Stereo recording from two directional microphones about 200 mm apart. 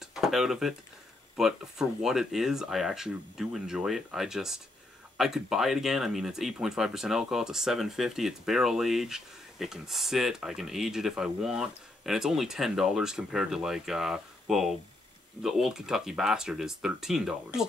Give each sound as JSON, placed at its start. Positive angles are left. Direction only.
{"t": 0.1, "sound": "speech", "side_deg": 0}